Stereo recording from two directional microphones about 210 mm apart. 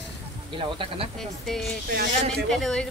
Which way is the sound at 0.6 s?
25° right (ahead or behind).